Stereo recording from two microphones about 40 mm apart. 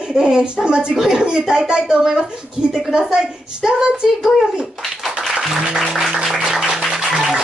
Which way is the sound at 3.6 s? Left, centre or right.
Centre.